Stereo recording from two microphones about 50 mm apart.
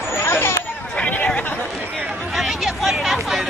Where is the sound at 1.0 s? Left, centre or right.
Left.